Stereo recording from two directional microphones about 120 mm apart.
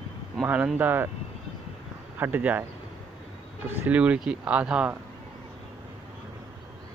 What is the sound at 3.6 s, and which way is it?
Speech, 10° right (ahead or behind).